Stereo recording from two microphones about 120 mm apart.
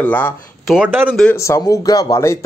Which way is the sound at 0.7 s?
15° right (ahead or behind).